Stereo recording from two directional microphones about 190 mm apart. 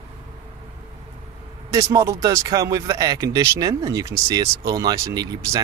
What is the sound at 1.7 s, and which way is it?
Speech, 15° right (ahead or behind).